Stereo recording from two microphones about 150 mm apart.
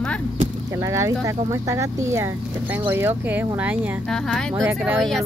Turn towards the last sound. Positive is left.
turn(degrees=0)  # may be behind; listen again after turning